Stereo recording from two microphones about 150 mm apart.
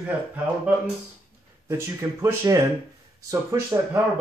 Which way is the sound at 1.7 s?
15° right (ahead or behind).